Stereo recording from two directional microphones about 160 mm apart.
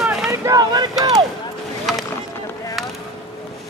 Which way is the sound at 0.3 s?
20° right (ahead or behind).